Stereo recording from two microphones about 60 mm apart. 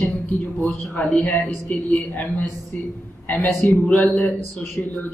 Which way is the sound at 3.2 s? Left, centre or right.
Left.